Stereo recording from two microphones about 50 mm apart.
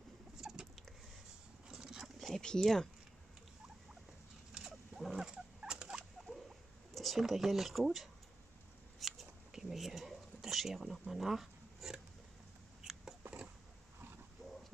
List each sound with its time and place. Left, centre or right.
0.4 s rodents: centre
1.7 s patter: centre
2.1 s a sound: centre
2.4 s speech: centre
4.6 s wild animals: centre
5.0 s rodents: centre
6.9 s speech: centre
9.0 s a sound: centre